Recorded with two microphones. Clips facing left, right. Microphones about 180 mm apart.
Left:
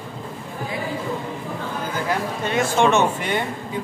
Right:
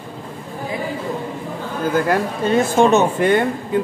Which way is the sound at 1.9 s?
50° right (ahead or behind).